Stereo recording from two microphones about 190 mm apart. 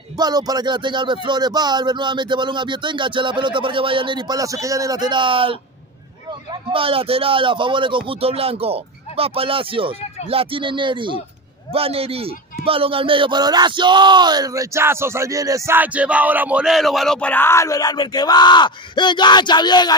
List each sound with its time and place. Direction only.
0.2 s a man's voice: 20° right (ahead or behind); by 19.9 s 20° left (ahead or behind)